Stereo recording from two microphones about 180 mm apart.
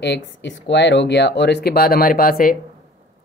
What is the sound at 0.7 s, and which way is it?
Speech, 75° left (ahead or behind).